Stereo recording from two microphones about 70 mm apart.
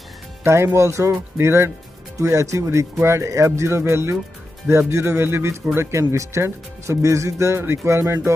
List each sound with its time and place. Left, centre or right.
0.4 s speech: right
4.6 s speech: right